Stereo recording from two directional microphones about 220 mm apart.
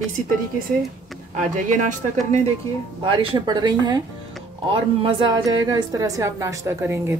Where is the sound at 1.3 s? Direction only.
35° right (ahead or behind).